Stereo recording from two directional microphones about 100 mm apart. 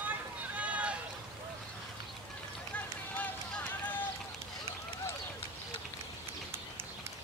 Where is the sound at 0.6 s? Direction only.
15° right (ahead or behind).